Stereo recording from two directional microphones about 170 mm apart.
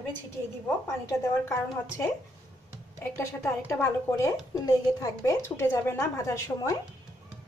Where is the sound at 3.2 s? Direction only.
15° left (ahead or behind).